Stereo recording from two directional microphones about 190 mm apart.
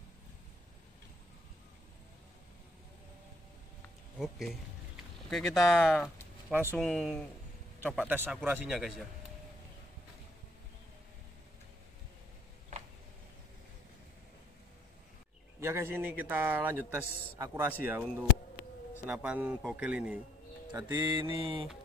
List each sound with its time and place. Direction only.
4.2 s a man's voice: centre (ahead or behind)
6.8 s a man's voice: centre (ahead or behind)
15.6 s a man's voice: 15° right (ahead or behind)
19.0 s a man's voice: 5° right (ahead or behind)
21.2 s mantra: 25° right (ahead or behind)